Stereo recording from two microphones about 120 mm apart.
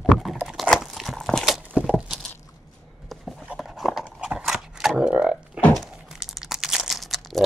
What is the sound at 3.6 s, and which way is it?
Horse, centre (ahead or behind).